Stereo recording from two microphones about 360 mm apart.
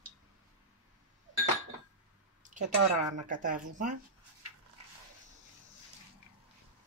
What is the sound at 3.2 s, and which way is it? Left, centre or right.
Speech, right.